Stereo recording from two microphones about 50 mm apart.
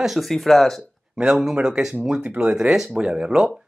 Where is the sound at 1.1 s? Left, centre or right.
Centre.